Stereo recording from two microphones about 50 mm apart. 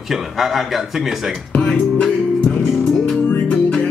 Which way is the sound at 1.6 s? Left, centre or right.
Left.